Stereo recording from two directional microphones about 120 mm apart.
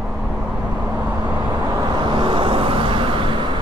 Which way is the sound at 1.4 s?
35° right (ahead or behind).